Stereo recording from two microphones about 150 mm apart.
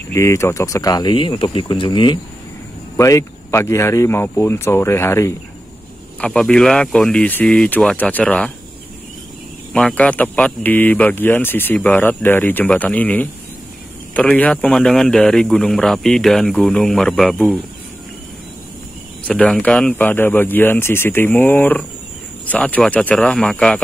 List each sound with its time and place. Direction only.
0.1 s speech: 20° left (ahead or behind)
3.0 s speech: 20° left (ahead or behind)
6.2 s a man's voice: 5° left (ahead or behind)
9.7 s a man's voice: 5° left (ahead or behind)
19.2 s a man's voice: 5° left (ahead or behind)